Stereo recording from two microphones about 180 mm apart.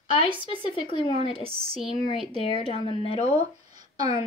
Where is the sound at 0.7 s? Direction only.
30° left (ahead or behind).